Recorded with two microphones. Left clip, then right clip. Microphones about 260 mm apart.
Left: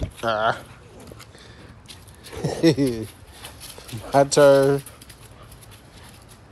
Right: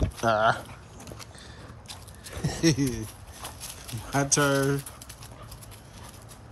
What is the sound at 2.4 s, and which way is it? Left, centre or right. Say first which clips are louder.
Speech: left 6 dB; centre.